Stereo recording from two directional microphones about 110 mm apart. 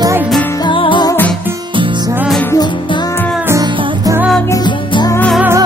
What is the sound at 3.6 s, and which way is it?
Music, 45° right (ahead or behind).